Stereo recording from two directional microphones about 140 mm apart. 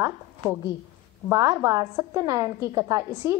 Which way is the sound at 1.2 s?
25° right (ahead or behind).